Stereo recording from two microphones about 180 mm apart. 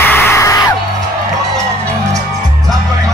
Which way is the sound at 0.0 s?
10° left (ahead or behind).